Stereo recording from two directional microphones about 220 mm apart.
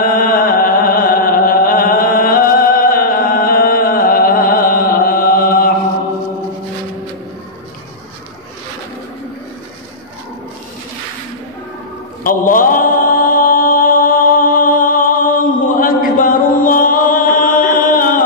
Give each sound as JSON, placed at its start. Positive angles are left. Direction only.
{"t": 0.0, "sound": "music", "side_deg": 40}
{"t": 12.2, "sound": "mantra", "side_deg": 40}